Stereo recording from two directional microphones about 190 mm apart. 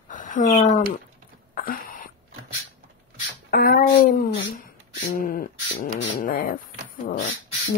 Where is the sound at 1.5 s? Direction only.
50° left (ahead or behind).